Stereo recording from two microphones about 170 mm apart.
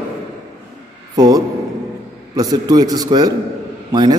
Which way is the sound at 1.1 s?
20° right (ahead or behind).